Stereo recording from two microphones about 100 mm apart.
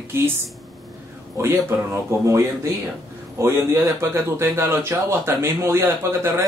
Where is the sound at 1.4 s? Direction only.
25° right (ahead or behind).